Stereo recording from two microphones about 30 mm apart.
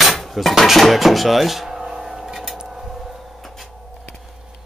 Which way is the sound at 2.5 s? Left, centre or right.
Centre.